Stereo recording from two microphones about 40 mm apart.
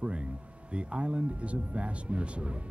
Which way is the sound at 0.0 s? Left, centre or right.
Right.